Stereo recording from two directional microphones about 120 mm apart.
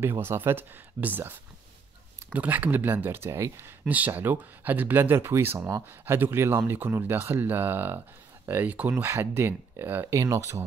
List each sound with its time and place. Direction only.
0.2 s speech: 20° right (ahead or behind)
5.7 s speech: 30° right (ahead or behind)
6.1 s speech: 20° right (ahead or behind)